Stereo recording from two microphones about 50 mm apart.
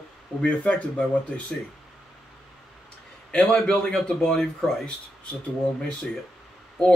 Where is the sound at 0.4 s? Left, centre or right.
Left.